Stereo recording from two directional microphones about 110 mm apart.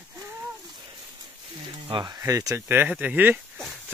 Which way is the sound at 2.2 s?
30° right (ahead or behind).